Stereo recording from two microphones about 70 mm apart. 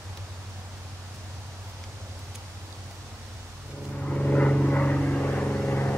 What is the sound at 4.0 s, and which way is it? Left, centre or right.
Vehicle, centre.